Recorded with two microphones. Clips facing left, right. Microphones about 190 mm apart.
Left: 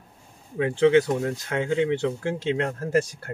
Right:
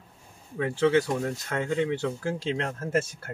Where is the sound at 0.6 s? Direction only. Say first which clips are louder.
Left 4 dB; 20° left (ahead or behind).